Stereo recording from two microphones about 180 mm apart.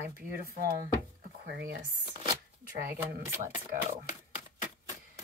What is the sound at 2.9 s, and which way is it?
Speech, 10° right (ahead or behind).